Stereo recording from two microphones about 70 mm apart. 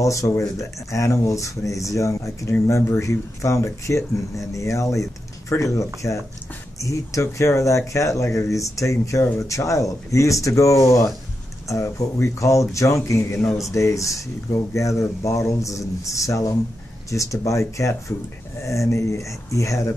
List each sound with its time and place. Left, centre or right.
0.0 s speech: left